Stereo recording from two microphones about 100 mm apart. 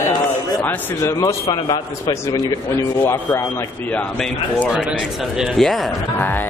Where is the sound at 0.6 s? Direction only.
20° left (ahead or behind).